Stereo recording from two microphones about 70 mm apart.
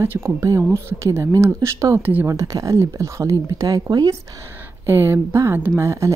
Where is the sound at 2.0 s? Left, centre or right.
Right.